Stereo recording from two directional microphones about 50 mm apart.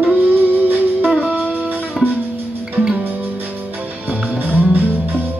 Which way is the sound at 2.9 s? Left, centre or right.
Right.